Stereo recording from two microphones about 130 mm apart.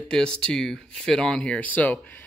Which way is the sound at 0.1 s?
5° left (ahead or behind).